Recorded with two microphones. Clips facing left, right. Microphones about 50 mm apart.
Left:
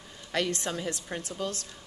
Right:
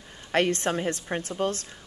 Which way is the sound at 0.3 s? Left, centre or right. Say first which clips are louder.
Right 6 dB; right.